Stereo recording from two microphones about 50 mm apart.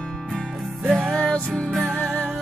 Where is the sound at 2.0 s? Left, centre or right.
Left.